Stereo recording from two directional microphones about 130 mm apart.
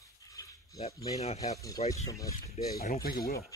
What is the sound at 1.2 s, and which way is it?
Speech, 55° left (ahead or behind).